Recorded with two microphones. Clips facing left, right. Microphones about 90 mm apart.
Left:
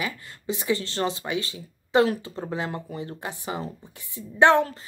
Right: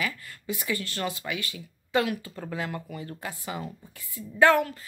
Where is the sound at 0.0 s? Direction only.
25° left (ahead or behind).